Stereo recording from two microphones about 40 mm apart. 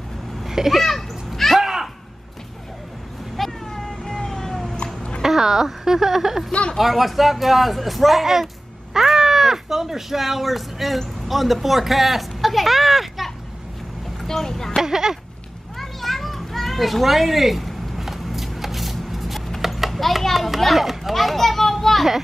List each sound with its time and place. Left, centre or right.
0.5 s babbling: centre
1.6 s a sound: centre
3.3 s cat: centre
5.2 s speech: centre
6.5 s speech: left
6.8 s speech: centre
14.2 s speech: centre
14.8 s speech: centre
15.8 s children playing: centre